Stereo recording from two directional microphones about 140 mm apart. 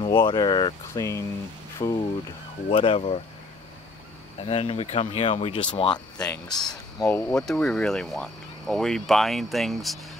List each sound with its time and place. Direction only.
0.0 s speech: 35° left (ahead or behind)
0.9 s speech: 20° left (ahead or behind)
1.8 s speech: 35° left (ahead or behind)
4.4 s speech: 45° left (ahead or behind)
6.2 s speech: 5° left (ahead or behind)
6.6 s speech: 25° left (ahead or behind)
7.1 s speech: 15° left (ahead or behind)